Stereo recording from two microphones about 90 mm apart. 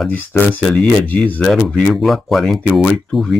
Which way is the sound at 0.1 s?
20° left (ahead or behind).